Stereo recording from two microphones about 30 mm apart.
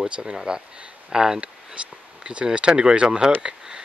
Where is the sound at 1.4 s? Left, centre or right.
Right.